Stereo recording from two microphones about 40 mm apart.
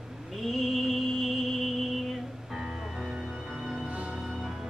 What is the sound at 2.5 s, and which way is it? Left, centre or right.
Music, centre.